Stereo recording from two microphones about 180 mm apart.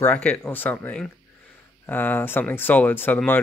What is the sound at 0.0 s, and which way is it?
Speech, 5° left (ahead or behind).